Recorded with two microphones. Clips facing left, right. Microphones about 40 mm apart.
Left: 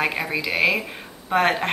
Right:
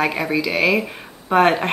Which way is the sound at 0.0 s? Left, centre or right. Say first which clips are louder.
Right 4 dB; centre.